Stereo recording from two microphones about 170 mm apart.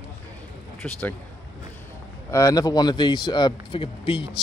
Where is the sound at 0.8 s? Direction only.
10° left (ahead or behind).